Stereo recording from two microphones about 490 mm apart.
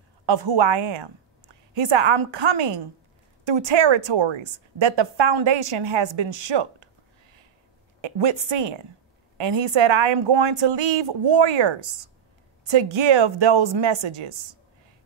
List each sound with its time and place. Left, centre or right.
0.3 s a woman's voice: right
8.0 s a woman's voice: right